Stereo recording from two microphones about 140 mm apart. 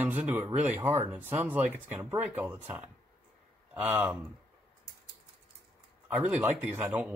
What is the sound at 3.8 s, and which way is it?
Speech, 15° right (ahead or behind).